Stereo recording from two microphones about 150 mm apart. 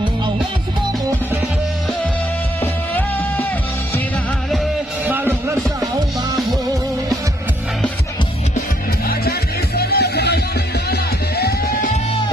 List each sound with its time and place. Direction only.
2.6 s music: 10° left (ahead or behind)
5.0 s music: 15° right (ahead or behind)
9.0 s music: 90° left